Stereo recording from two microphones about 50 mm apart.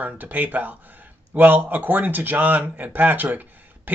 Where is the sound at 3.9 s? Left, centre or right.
Right.